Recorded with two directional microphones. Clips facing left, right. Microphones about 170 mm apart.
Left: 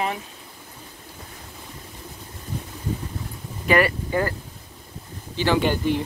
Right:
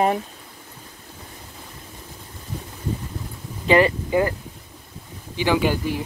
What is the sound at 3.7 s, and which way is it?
Speech, 20° right (ahead or behind).